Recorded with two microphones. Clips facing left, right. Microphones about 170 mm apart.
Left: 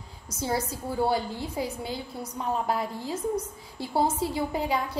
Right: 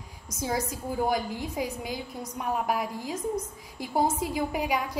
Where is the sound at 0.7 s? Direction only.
15° right (ahead or behind).